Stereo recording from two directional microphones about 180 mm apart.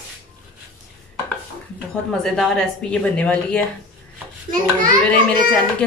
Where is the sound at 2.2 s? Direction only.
5° left (ahead or behind).